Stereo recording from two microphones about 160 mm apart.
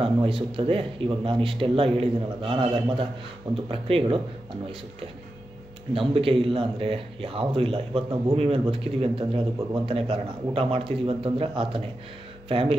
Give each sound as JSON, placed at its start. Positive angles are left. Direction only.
{"t": 0.0, "sound": "speech", "side_deg": -35}
{"t": 5.9, "sound": "speech", "side_deg": -35}